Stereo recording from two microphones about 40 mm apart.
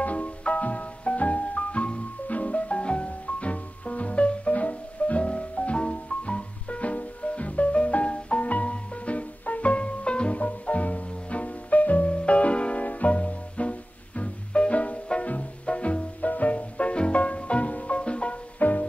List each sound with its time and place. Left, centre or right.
0.0 s music: left
10.4 s music: left
18.6 s music: left